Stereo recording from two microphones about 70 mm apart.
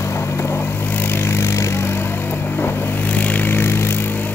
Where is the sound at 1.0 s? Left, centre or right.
Left.